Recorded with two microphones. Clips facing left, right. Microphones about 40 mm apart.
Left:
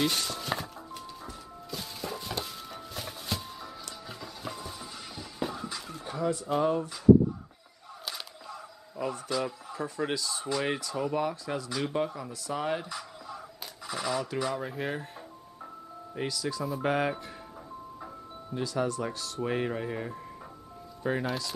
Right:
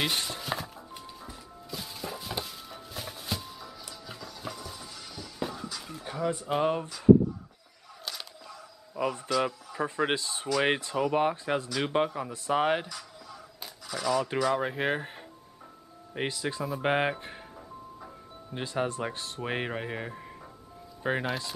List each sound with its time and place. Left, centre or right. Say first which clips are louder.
0.0 s speech: left 1 dB; centre
0.4 s music: left 1 dB; centre
4.4 s music: left 1 dB; centre
5.8 s a sound: left 1 dB; centre
6.0 s a sound: even; centre
6.3 s speech: left 1 dB; right
8.0 s a sound: even; centre
8.9 s speech: right 3 dB; right
12.8 s a sound: left 3 dB; left
14.5 s speech: right 5 dB; right
16.2 s speech: right 1 dB; right
18.5 s speech: left 1 dB; right